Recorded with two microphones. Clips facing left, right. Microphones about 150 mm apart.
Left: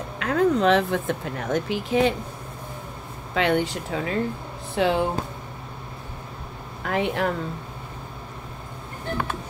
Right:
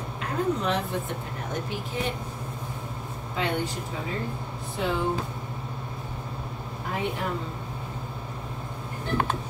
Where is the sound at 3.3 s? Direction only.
85° left.